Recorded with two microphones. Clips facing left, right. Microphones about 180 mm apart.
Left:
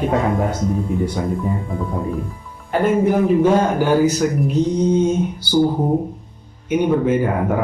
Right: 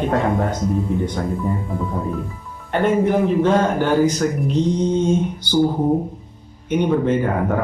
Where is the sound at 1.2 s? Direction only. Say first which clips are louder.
Left 2 dB; 5° left (ahead or behind).